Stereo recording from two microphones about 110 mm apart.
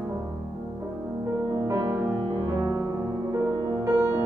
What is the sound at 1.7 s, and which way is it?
Music, 15° right (ahead or behind).